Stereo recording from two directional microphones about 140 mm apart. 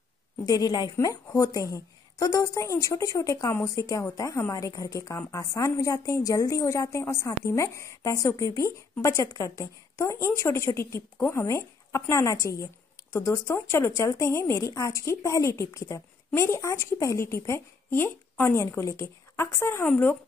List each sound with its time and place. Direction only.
0.5 s a woman's voice: 30° left (ahead or behind); by 20.2 s 15° left (ahead or behind)